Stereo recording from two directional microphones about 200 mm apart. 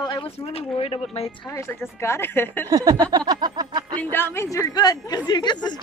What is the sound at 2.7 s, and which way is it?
Speech, 20° right (ahead or behind).